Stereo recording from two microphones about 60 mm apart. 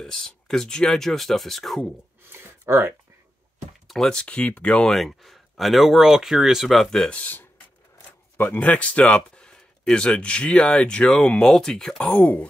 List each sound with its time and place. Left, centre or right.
0.0 s speech: centre
2.3 s a sound: right
3.8 s speech: centre
4.9 s speech: centre
7.2 s speech: left; by 12.2 s centre
12.2 s speech: left